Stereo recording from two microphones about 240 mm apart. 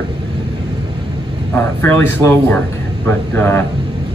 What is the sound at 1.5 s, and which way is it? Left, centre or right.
Speech, centre.